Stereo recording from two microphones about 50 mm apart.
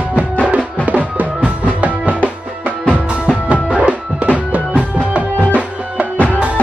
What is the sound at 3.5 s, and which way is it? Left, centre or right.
Music, right.